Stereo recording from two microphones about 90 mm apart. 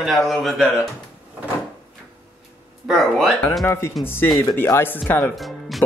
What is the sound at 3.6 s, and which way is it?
Speech, 30° left (ahead or behind).